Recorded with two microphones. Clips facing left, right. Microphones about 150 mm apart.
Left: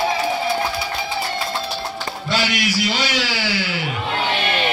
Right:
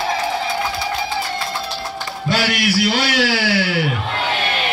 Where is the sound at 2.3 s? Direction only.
60° right (ahead or behind).